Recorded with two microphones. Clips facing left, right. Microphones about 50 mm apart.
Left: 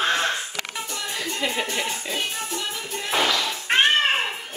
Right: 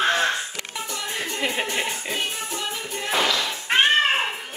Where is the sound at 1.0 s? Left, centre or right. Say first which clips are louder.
Even; right.